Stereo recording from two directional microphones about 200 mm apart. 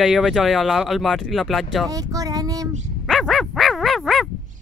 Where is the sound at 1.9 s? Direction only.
15° right (ahead or behind).